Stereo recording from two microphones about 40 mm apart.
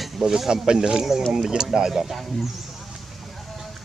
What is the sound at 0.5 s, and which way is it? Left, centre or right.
Speech, centre.